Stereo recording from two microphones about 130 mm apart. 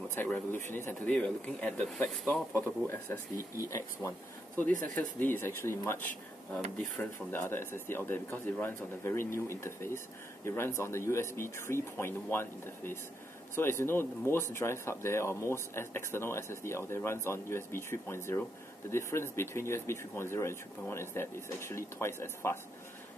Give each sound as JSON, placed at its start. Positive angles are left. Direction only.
{"t": 0.1, "sound": "speech", "side_deg": 15}
{"t": 2.5, "sound": "speech", "side_deg": 20}
{"t": 4.6, "sound": "speech", "side_deg": 15}
{"t": 7.0, "sound": "speech", "side_deg": 20}